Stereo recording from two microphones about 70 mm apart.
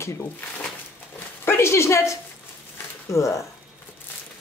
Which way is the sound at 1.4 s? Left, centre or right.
Left.